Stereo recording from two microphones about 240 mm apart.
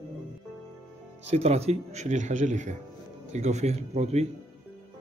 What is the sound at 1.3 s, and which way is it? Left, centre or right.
A man's voice, right.